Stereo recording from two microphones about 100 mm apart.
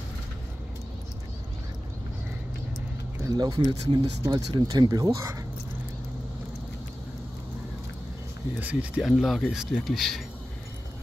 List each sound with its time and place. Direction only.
3.3 s speech: 40° right (ahead or behind)
8.5 s speech: 15° right (ahead or behind)
9.0 s speech: centre (ahead or behind)